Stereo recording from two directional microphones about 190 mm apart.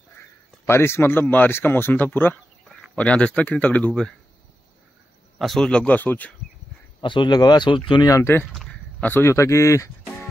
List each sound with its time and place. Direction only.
0.2 s speech: 15° left (ahead or behind)
5.4 s speech: centre (ahead or behind)
7.0 s speech: 25° left (ahead or behind)